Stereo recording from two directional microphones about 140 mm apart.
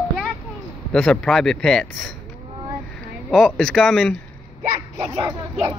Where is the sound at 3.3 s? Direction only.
Centre (ahead or behind).